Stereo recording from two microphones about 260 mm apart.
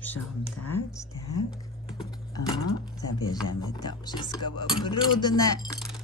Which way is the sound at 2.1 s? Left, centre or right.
Centre.